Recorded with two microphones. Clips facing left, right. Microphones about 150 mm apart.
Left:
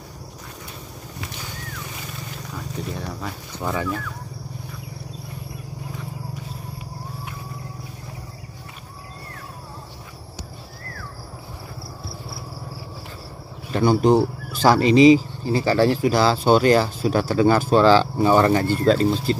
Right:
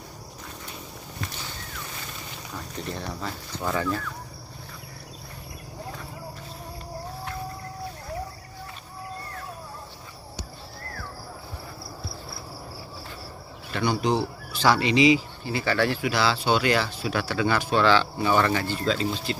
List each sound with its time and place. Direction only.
2.5 s speech: 5° left (ahead or behind)
13.7 s speech: 45° left (ahead or behind)